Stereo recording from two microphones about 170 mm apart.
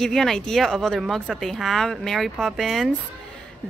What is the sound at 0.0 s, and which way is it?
A woman's voice, centre (ahead or behind).